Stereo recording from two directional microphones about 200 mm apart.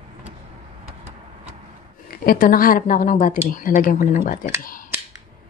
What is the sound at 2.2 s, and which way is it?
A woman's voice, 45° left (ahead or behind).